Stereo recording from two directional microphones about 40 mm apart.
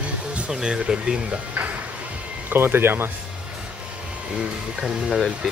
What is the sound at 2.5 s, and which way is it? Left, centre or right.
Speech, right.